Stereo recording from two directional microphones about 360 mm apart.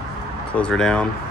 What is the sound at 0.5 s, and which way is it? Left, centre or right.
Speech, centre.